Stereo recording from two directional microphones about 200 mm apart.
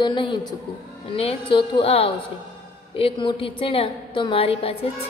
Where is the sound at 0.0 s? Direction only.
20° left (ahead or behind).